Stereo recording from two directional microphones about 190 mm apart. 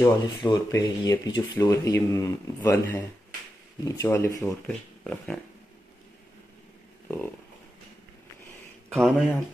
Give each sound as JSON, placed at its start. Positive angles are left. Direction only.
{"t": 0.0, "sound": "speech", "side_deg": 15}
{"t": 5.0, "sound": "speech", "side_deg": 5}
{"t": 8.9, "sound": "speech", "side_deg": -5}